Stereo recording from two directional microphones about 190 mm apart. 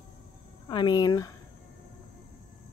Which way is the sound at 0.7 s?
25° left (ahead or behind).